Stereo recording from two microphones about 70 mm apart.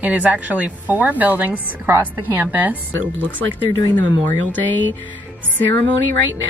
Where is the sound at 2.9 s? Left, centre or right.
Left.